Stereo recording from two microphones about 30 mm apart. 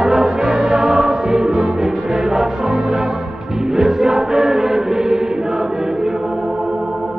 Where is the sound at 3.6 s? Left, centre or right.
Centre.